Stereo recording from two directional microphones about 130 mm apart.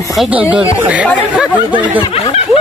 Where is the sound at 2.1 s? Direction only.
50° left (ahead or behind).